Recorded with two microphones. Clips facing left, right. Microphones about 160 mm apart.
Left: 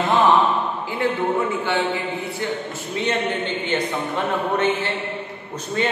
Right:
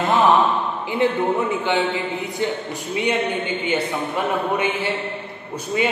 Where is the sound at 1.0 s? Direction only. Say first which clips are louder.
Right 2 dB; 20° right (ahead or behind).